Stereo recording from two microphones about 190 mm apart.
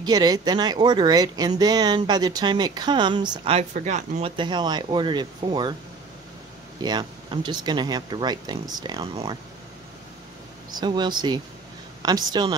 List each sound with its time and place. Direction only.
0.0 s speech: 20° right (ahead or behind); by 4.3 s 40° right (ahead or behind)
4.4 s speech: 25° right (ahead or behind)
6.8 s speech: 20° right (ahead or behind)
10.7 s speech: 20° right (ahead or behind)